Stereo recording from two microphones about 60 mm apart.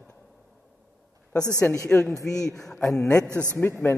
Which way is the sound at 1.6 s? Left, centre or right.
Left.